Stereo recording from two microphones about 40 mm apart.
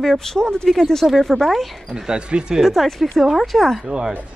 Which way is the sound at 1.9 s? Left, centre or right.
Centre.